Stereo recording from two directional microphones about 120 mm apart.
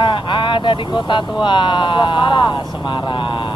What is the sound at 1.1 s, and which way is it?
Mantra, 45° left (ahead or behind).